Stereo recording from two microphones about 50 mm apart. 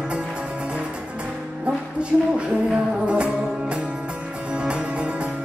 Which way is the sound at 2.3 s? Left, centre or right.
Right.